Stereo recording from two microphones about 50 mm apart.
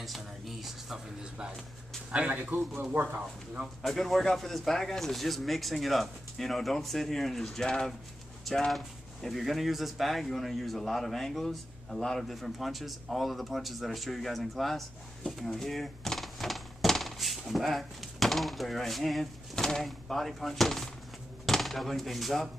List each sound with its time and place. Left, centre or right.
0.0 s a sound: centre
2.1 s speech: right
2.9 s speech: right
3.8 s speech: centre